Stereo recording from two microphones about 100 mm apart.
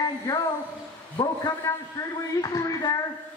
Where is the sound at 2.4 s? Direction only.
40° left (ahead or behind).